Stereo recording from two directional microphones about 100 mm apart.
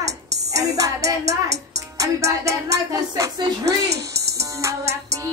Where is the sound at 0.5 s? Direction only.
35° right (ahead or behind).